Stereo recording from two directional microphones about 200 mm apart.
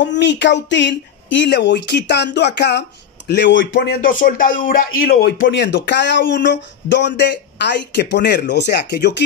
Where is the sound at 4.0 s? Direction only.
45° left (ahead or behind).